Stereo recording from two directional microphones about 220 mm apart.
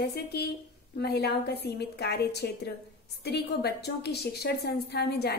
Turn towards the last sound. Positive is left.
turn(degrees=45)  # may be behind; listen again after turning